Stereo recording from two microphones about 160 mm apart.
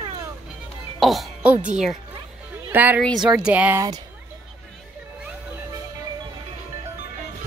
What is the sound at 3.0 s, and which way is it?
Speech, centre (ahead or behind).